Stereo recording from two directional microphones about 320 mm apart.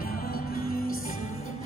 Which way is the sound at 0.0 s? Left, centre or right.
Left.